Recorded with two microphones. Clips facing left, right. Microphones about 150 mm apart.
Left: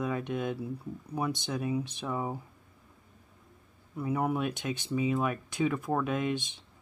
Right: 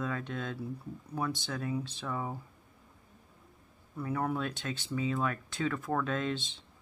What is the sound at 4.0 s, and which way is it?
Speech, 15° left (ahead or behind).